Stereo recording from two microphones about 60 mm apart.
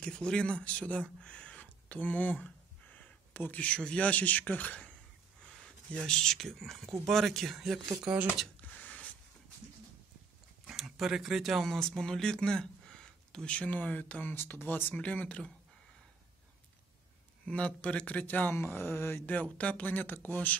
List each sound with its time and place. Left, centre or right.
0.0 s speech: centre
1.6 s a sound: left
3.6 s speech: centre
5.4 s a sound: centre
5.9 s speech: centre
8.5 s a sound: left
10.7 s speech: centre; by 14.3 s left
14.3 s speech: left
15.0 s speech: left
17.5 s speech: centre; by 19.2 s left
19.2 s speech: left